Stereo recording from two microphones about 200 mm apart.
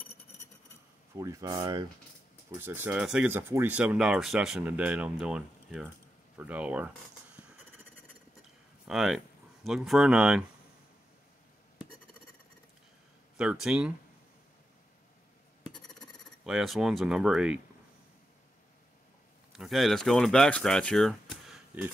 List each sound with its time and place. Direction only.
1.1 s speech: 15° right (ahead or behind)
8.8 s speech: 5° right (ahead or behind)
13.4 s speech: 5° right (ahead or behind)
16.0 s speech: centre (ahead or behind)
19.5 s speech: centre (ahead or behind)